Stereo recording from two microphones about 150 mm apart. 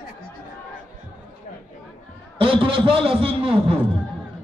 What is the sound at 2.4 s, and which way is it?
A man's voice, 35° right (ahead or behind).